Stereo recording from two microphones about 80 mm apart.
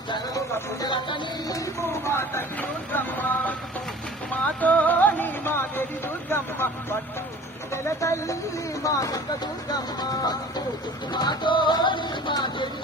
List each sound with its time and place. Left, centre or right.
0.8 s music: left
1.5 s speech: left
2.9 s vehicle: left
4.6 s music: centre
6.3 s speech: left
11.1 s music: left